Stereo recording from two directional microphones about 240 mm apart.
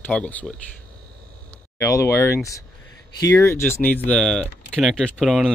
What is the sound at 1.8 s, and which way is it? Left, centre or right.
Speech, centre.